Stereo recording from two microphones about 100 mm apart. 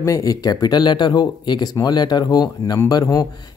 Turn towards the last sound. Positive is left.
turn(degrees=35)  # may be behind; listen again after turning